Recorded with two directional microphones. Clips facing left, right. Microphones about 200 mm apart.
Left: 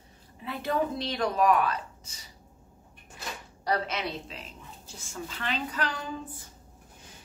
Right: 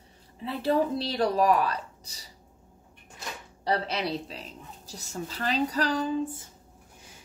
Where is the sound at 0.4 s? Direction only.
30° right (ahead or behind).